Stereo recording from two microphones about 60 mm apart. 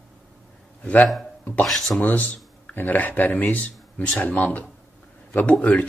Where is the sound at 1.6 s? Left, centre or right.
Centre.